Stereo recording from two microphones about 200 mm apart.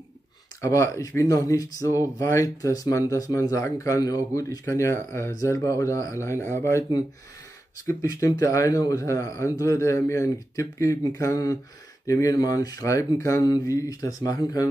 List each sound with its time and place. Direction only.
0.6 s speech: 15° left (ahead or behind)